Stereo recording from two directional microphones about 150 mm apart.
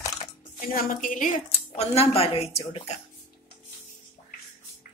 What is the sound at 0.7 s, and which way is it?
Speech, 65° left (ahead or behind).